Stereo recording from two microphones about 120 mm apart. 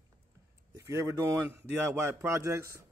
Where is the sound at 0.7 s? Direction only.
25° right (ahead or behind).